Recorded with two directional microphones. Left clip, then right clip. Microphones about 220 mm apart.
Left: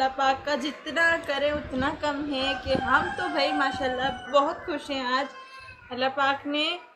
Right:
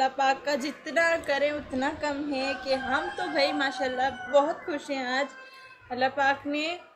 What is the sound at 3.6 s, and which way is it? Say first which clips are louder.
A woman's voice: left 1 dB; 5° right (ahead or behind).